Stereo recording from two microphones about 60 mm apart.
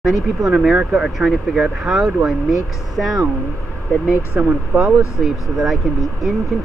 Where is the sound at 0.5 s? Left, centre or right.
Centre.